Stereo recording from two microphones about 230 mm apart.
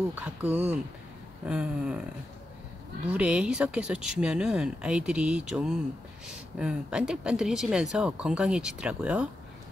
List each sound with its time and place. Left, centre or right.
0.1 s speech: centre
3.1 s speech: centre